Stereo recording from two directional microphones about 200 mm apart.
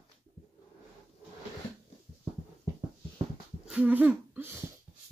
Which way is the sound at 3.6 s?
5° right (ahead or behind).